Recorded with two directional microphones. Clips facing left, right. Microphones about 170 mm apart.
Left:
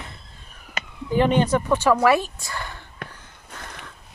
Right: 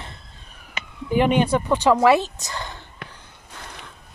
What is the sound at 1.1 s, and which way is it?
Speech, 15° right (ahead or behind).